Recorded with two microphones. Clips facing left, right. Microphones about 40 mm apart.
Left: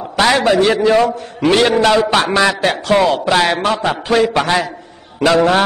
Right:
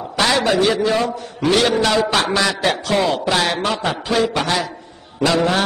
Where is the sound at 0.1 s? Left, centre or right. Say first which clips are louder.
Left 4 dB; left.